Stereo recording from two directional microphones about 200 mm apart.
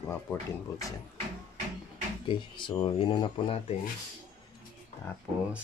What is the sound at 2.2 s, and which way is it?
Speech, 25° left (ahead or behind).